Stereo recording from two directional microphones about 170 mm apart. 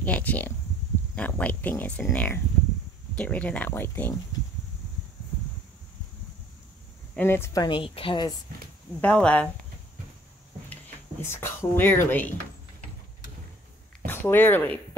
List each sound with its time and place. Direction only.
0.0 s a sound: 10° left (ahead or behind)
1.1 s speech: 10° left (ahead or behind)
7.2 s speech: 15° left (ahead or behind)
7.6 s a woman's voice: 30° left (ahead or behind)
9.0 s speech: 5° left (ahead or behind)
10.7 s speech: 15° left (ahead or behind)
14.0 s speech: 15° left (ahead or behind)